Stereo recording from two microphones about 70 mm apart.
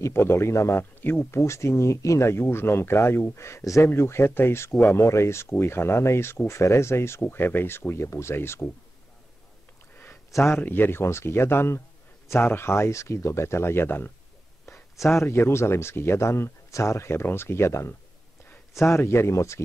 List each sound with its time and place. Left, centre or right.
0.0 s speech: left
7.2 s speech: left
10.3 s speech: left
14.7 s a sound: centre
15.1 s speech: left